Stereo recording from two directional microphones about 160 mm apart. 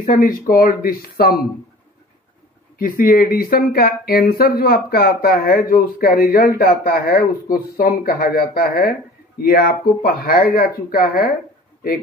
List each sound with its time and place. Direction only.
0.0 s speech: 65° left (ahead or behind)
2.8 s speech: 65° left (ahead or behind)